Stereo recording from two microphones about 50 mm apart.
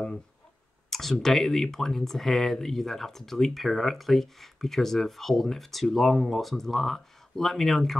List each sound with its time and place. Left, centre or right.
0.8 s speech: centre